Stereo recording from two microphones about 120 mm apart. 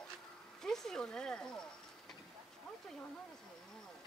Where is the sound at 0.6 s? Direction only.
5° left (ahead or behind).